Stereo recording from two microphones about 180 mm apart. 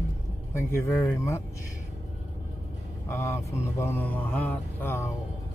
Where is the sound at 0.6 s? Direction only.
15° left (ahead or behind).